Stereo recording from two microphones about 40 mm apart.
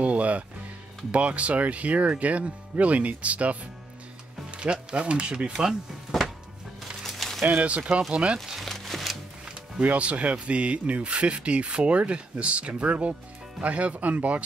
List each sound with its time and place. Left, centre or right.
0.0 s music: right
1.1 s speech: right
7.0 s a sound: centre
7.4 s speech: right
8.6 s music: centre
9.8 s speech: right